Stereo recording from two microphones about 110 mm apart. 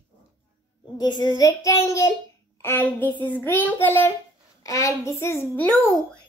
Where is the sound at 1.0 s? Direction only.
40° left (ahead or behind).